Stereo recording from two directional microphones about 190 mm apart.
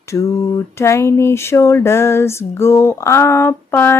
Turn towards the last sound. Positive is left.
turn(degrees=10)  # may be behind; listen again after turning